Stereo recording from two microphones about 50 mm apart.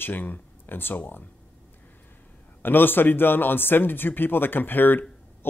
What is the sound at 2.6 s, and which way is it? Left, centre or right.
Speech, left.